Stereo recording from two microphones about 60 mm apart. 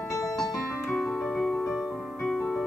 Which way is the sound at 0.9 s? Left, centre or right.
Centre.